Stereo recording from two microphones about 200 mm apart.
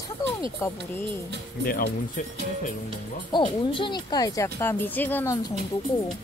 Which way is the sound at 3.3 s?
25° left (ahead or behind).